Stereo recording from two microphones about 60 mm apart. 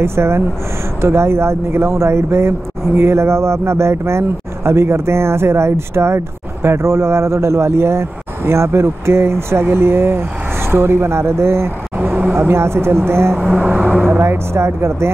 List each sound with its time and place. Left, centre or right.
0.0 s speech: right
12.0 s speech: right
12.4 s speech: right
13.4 s speech: right
14.0 s speech: right